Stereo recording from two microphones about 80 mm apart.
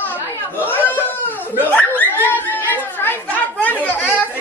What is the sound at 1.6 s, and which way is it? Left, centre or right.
Chuckle, left.